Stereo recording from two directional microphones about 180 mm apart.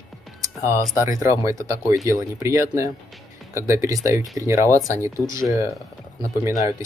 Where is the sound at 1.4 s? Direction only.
15° right (ahead or behind).